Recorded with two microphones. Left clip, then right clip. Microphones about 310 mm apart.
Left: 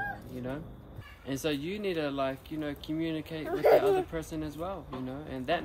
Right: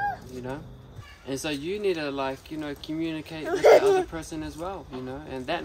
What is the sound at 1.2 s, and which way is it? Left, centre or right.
Speech, centre.